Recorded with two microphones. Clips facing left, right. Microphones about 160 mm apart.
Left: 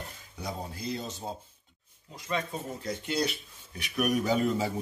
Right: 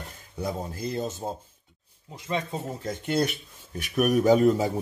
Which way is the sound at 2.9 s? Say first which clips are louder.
Right 5 dB; 50° right (ahead or behind).